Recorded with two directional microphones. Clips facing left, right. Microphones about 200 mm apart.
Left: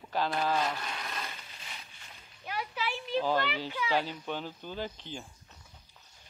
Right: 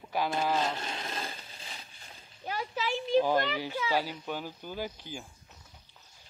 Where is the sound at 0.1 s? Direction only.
10° right (ahead or behind).